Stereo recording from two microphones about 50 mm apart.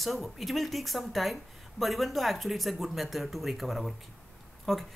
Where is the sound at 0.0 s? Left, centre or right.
Centre.